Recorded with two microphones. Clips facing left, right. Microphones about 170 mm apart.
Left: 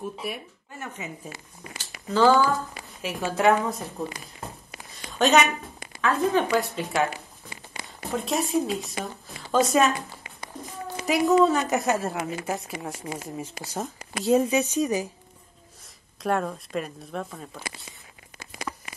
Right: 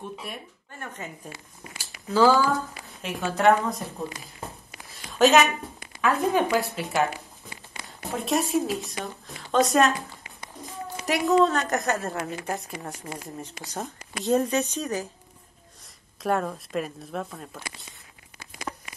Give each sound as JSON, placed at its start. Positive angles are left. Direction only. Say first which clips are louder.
{"t": 0.0, "sound": "a woman's voice", "louder": "left 4 dB", "side_deg": 5}
{"t": 4.8, "sound": "a sound", "louder": "right 3 dB", "side_deg": 0}
{"t": 5.9, "sound": "speech", "louder": "even", "side_deg": -15}
{"t": 6.5, "sound": "a woman's voice", "louder": "even", "side_deg": 0}
{"t": 8.1, "sound": "a woman's voice", "louder": "right 1 dB", "side_deg": 0}
{"t": 16.2, "sound": "a woman's voice", "louder": "even", "side_deg": 0}